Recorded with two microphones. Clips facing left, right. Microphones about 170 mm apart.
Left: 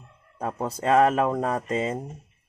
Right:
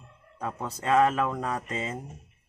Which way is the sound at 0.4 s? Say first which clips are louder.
Left 5 dB; 35° left (ahead or behind).